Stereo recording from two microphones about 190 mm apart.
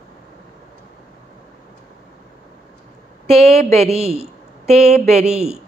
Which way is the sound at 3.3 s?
30° right (ahead or behind).